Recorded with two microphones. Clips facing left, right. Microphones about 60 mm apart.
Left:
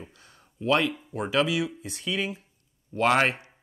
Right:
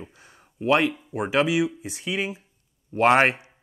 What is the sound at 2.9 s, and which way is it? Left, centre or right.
Speech, right.